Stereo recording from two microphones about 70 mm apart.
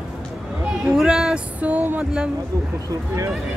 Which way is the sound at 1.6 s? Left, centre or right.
Right.